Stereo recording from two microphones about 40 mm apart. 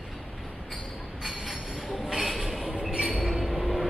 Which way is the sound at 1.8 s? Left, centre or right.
Centre.